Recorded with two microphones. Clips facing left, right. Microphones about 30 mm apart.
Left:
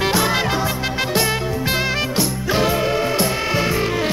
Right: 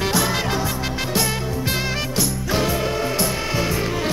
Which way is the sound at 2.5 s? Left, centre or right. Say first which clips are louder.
Left 4 dB; centre.